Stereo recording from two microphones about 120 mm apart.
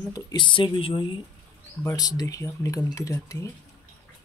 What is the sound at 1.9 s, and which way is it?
Speech, 30° left (ahead or behind).